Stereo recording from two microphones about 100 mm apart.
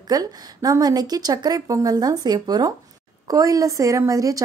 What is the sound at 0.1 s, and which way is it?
A woman's voice, 40° right (ahead or behind).